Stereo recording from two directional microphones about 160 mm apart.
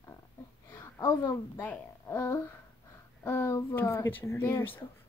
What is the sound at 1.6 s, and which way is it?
A woman's voice, 10° left (ahead or behind).